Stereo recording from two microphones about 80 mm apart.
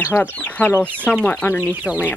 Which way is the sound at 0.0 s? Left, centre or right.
Left.